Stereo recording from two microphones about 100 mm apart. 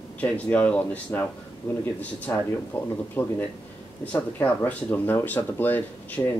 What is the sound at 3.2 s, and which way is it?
Speech, 15° left (ahead or behind).